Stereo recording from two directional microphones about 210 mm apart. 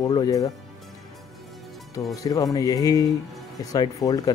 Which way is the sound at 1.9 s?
15° left (ahead or behind).